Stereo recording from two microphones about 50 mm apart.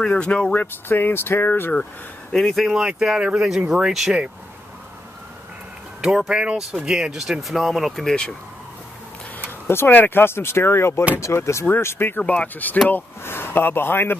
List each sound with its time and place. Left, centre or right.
0.0 s speech: centre
0.6 s speech: left
2.3 s speech: centre
2.7 s speech: centre
5.9 s speech: centre
9.7 s speech: left
11.7 s speech: left
12.2 s speech: left
13.2 s speech: left